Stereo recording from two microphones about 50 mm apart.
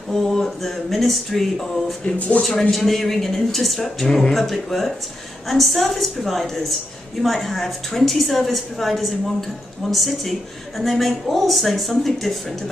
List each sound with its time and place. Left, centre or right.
0.1 s speech: centre
2.1 s speech: left
2.7 s speech: centre